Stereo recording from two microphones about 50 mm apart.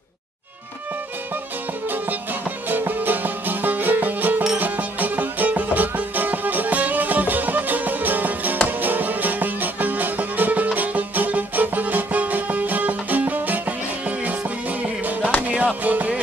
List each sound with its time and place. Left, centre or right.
2.9 s music: right